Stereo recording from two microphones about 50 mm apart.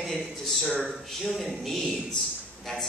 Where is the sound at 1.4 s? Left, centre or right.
Centre.